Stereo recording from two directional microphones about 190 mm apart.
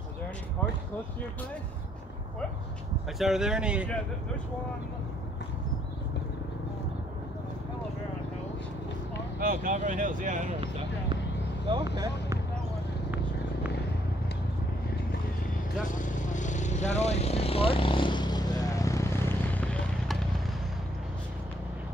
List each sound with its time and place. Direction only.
3.2 s speech: centre (ahead or behind)
9.4 s speech: 45° right (ahead or behind)
11.6 s speech: 25° right (ahead or behind)
15.9 s vehicle: 40° left (ahead or behind); by 20.2 s 5° left (ahead or behind)